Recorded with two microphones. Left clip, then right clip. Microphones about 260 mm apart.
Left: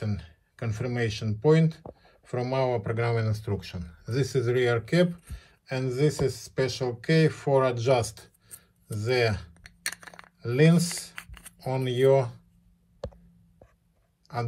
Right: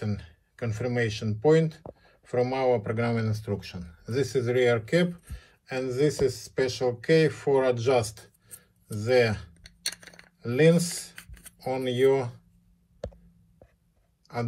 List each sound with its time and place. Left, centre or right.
0.0 s speech: centre
9.9 s coin: left